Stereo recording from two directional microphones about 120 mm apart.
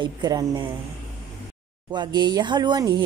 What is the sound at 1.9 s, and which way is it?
Speech, 35° right (ahead or behind).